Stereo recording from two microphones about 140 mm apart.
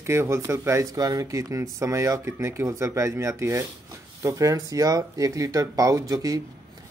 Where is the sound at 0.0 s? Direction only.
20° right (ahead or behind).